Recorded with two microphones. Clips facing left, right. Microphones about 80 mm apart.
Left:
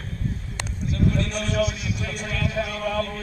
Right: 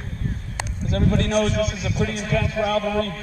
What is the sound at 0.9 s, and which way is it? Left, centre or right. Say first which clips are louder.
Speech: right 3 dB; right.